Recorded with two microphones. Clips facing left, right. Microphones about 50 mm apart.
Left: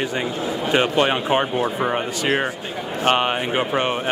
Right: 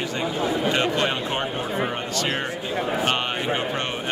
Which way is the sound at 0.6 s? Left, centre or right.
Centre.